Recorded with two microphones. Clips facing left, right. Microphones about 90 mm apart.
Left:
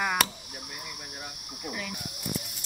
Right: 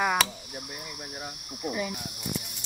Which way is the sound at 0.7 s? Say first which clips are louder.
Right 2 dB; 15° right (ahead or behind).